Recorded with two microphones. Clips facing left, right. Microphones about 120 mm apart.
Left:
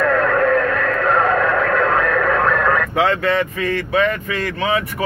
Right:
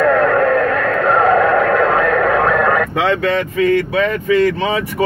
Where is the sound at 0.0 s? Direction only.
20° right (ahead or behind).